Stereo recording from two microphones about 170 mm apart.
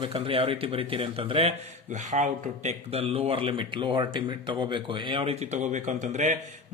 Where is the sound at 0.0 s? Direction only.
35° right (ahead or behind).